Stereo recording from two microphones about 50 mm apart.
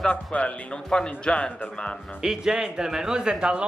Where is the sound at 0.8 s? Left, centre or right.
Centre.